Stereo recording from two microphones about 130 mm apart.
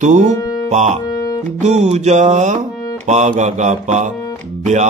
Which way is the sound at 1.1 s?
30° left (ahead or behind).